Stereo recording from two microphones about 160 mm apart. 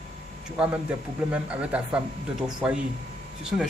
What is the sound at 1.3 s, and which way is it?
A man's voice, 5° right (ahead or behind).